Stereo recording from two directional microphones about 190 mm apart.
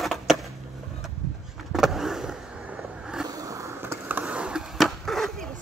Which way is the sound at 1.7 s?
Centre (ahead or behind).